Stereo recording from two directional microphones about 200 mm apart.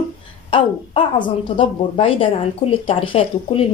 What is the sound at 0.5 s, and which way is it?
Speech, 25° left (ahead or behind).